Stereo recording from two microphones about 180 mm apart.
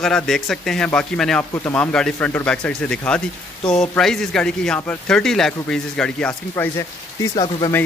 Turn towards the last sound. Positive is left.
turn(degrees=25)  # may be behind; listen again after turning